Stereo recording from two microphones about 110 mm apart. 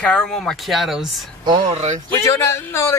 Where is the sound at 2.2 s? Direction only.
25° left (ahead or behind).